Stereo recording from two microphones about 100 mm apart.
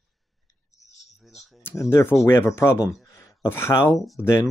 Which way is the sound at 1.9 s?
25° left (ahead or behind).